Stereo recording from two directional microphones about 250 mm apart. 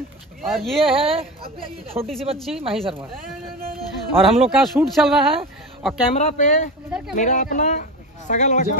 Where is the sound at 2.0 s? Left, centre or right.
Centre.